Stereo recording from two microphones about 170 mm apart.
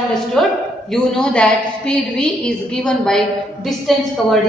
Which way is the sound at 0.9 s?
5° left (ahead or behind).